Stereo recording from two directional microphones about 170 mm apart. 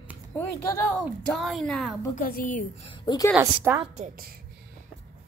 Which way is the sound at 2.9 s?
25° left (ahead or behind).